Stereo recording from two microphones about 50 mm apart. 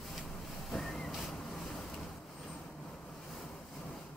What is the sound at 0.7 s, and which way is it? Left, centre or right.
Vehicle, centre.